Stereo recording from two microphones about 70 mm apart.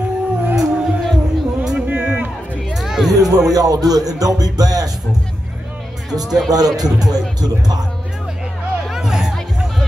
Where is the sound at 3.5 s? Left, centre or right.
Right.